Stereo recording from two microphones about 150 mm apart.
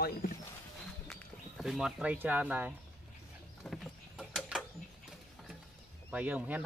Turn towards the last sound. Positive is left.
turn(degrees=-10)  # may be behind; listen again after turning